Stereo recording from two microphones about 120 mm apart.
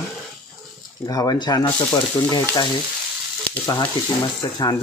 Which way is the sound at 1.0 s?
30° left (ahead or behind).